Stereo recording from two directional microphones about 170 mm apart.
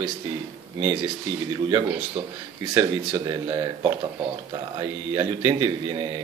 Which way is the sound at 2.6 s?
25° right (ahead or behind).